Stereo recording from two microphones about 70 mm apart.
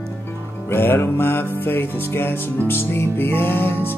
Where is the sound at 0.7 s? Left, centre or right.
Left.